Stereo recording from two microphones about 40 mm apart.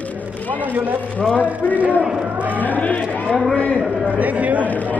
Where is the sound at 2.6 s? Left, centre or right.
Left.